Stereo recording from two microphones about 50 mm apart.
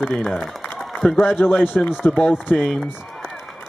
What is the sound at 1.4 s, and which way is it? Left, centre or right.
Speech, left.